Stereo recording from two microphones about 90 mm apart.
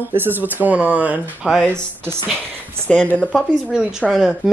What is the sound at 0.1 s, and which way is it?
Speech, 25° right (ahead or behind).